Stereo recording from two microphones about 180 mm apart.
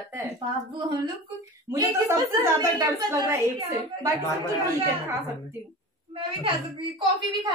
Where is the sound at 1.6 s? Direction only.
20° right (ahead or behind).